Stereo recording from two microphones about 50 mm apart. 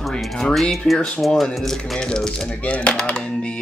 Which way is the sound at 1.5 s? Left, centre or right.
Centre.